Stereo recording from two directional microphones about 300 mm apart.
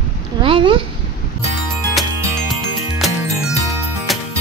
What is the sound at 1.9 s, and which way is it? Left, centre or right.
Music, centre.